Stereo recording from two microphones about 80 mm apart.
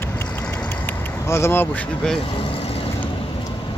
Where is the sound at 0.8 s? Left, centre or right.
Left.